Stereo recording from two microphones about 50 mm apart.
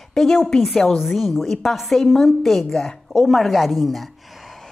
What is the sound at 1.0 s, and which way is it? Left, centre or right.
A woman's voice, centre.